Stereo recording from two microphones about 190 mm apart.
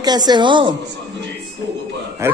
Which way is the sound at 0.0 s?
20° right (ahead or behind).